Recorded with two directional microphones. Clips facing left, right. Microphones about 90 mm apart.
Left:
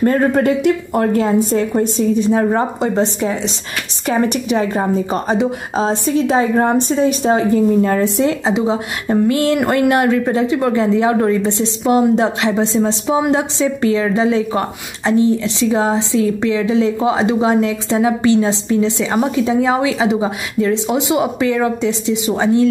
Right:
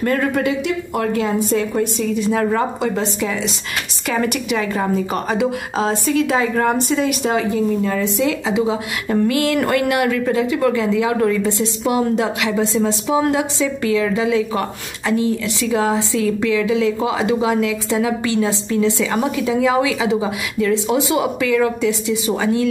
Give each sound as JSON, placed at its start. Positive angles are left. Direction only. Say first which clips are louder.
{"t": 0.0, "sound": "a woman's voice", "louder": "left 5 dB", "side_deg": 35}
{"t": 7.8, "sound": "speech", "louder": "left 4 dB", "side_deg": 50}
{"t": 8.3, "sound": "a woman's voice", "louder": "left 2 dB", "side_deg": 30}